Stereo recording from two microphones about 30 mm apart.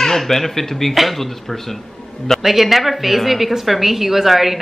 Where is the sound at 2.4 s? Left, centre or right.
Centre.